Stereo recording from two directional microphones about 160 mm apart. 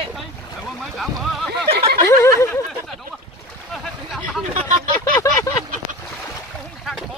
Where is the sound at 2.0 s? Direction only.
15° left (ahead or behind).